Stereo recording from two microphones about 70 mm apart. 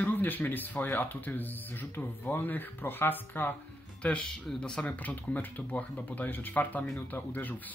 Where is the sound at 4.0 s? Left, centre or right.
Centre.